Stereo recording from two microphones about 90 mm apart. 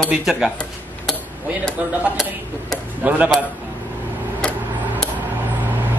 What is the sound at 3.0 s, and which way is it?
Speech, 15° right (ahead or behind).